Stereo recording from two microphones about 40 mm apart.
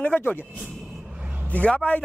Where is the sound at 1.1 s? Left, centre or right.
Right.